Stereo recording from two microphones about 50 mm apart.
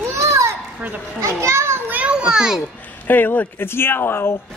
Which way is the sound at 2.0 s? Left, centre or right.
Centre.